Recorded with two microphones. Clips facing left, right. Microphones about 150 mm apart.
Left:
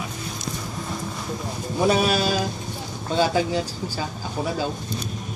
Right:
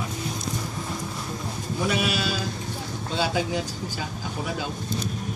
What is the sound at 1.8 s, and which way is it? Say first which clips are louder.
Speech: left 6 dB; 40° left (ahead or behind).